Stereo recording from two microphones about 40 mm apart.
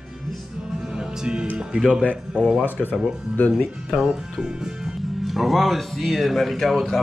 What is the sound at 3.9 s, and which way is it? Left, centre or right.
Speech, centre.